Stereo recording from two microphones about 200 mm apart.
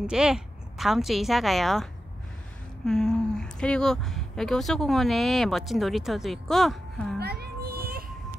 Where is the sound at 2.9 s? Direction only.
5° left (ahead or behind).